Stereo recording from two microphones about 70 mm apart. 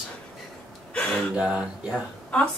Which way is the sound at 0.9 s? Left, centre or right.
Centre.